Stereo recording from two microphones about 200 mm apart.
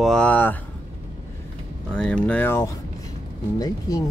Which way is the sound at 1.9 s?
5° left (ahead or behind).